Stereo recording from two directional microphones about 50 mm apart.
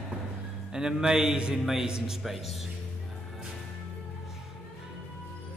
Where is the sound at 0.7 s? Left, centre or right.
Centre.